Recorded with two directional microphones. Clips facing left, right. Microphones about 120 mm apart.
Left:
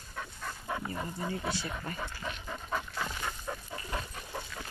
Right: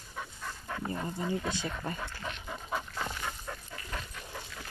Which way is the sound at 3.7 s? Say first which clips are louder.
Left 3 dB; 25° left (ahead or behind).